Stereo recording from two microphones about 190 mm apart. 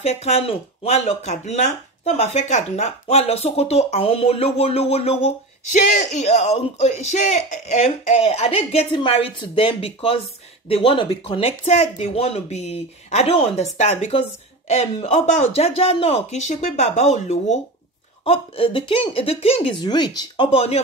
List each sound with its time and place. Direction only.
0.0 s speech: 35° left (ahead or behind)